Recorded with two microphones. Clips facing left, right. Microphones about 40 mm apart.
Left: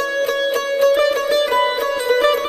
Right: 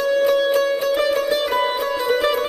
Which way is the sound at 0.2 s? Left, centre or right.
Centre.